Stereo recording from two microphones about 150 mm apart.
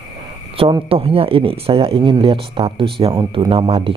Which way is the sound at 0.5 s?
35° right (ahead or behind).